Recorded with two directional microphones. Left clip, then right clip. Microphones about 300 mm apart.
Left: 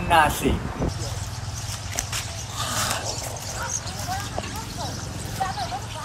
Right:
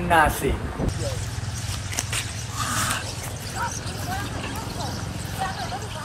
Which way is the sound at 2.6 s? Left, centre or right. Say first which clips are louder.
Right 1 dB; left.